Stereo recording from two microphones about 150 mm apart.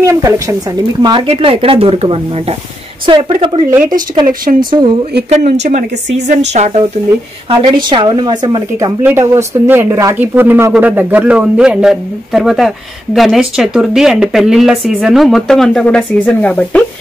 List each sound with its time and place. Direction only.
0.0 s speech: 20° right (ahead or behind)
1.0 s speech: 35° right (ahead or behind)
4.3 s speech: 70° right (ahead or behind)
4.6 s speech: 30° right (ahead or behind)
5.4 s speech: 50° right (ahead or behind)
7.4 s speech: 30° right (ahead or behind); by 16.8 s 10° left (ahead or behind)